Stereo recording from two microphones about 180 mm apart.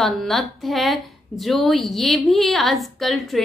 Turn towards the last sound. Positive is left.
turn(degrees=0)  # may be behind; listen again after turning